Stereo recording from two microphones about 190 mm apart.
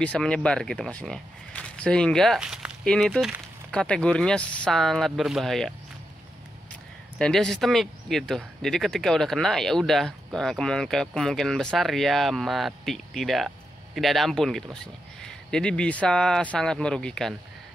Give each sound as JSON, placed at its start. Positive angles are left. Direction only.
{"t": 0.0, "sound": "speech", "side_deg": 5}
{"t": 7.2, "sound": "speech", "side_deg": 5}